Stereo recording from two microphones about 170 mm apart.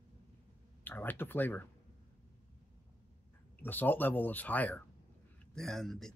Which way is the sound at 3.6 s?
10° left (ahead or behind).